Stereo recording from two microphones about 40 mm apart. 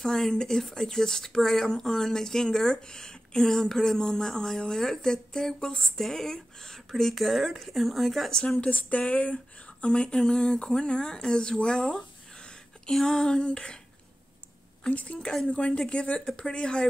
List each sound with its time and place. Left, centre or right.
0.0 s speech: centre
6.9 s speech: centre
8.5 s speech: left
13.0 s speech: centre
14.9 s speech: left